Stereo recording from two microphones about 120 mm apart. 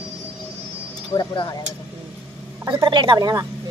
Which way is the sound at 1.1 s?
35° left (ahead or behind).